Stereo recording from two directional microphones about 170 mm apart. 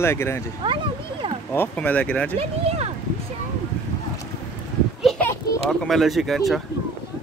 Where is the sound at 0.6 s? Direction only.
30° right (ahead or behind).